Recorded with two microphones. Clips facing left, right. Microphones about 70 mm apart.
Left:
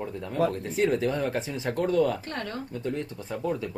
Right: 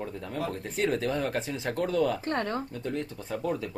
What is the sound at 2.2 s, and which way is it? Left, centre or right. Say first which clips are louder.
Speech: right 4 dB; right.